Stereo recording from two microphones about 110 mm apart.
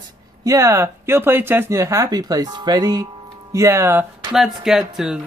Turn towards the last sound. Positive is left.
turn(degrees=-5)  # may be behind; listen again after turning